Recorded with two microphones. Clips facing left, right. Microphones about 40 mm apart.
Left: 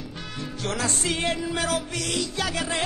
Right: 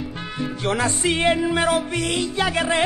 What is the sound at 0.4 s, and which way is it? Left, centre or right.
Music, right.